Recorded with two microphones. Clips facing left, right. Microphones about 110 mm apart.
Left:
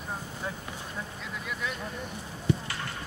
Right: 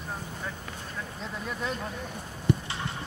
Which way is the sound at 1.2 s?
35° right (ahead or behind).